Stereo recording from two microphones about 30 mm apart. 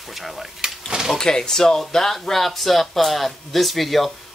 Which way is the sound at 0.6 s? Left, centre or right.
Centre.